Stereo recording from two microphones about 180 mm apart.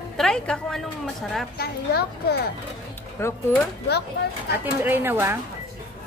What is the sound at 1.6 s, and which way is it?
Speech, 65° left (ahead or behind).